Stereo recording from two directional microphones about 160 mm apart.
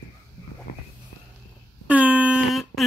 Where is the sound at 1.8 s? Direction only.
10° right (ahead or behind).